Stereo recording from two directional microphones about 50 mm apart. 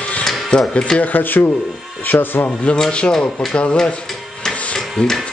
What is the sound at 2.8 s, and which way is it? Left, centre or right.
Speech, left.